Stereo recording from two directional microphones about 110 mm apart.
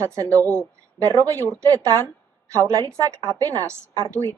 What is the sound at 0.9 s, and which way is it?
A woman's voice, 35° right (ahead or behind).